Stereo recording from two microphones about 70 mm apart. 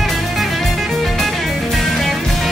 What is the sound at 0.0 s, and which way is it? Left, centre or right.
Music, centre.